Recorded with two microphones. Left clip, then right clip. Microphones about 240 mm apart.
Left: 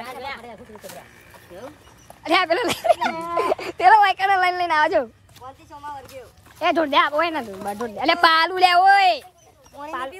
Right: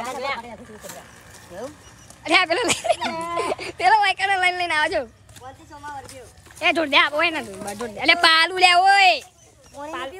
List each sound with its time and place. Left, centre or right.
1.5 s speech: centre
2.2 s speech: centre
3.1 s a sound: left
3.3 s speech: centre
6.6 s speech: centre